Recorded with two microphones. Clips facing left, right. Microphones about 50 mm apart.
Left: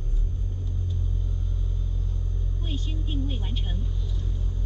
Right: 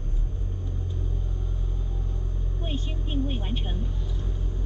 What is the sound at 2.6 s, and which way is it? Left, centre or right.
Vehicle, right.